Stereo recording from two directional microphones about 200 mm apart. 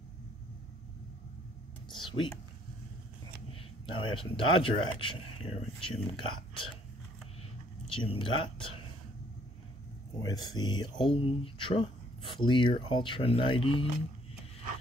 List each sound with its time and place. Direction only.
1.9 s speech: 25° left (ahead or behind)
3.8 s speech: 25° left (ahead or behind)
7.9 s speech: 25° left (ahead or behind)
10.2 s speech: 20° left (ahead or behind)